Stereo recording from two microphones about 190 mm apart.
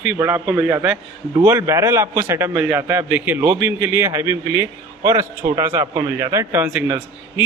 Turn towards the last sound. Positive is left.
turn(degrees=-5)  # may be behind; listen again after turning